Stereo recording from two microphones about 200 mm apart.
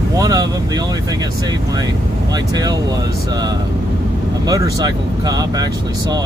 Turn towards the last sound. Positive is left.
turn(degrees=-20)  # may be behind; listen again after turning